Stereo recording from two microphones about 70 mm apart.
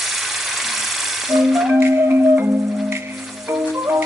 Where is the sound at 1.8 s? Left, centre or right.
Right.